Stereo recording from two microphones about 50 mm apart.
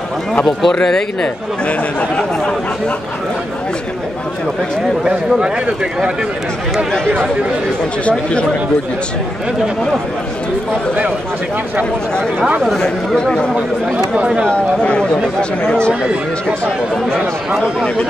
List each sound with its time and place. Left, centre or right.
0.5 s speech: centre
1.2 s speech: left
8.0 s speech: left
12.6 s speech: centre
13.9 s speech: right
14.5 s speech: centre
15.9 s speech: centre